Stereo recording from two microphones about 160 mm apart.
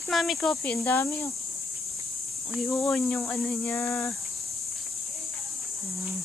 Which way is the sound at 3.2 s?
15° left (ahead or behind).